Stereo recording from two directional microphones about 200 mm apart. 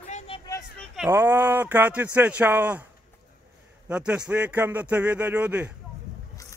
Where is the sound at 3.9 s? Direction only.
5° right (ahead or behind).